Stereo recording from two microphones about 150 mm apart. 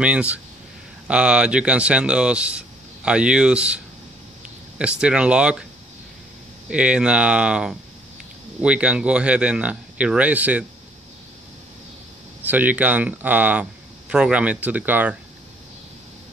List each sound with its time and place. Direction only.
0.0 s speech: 10° right (ahead or behind)
6.7 s speech: 5° right (ahead or behind)
12.4 s speech: 10° right (ahead or behind)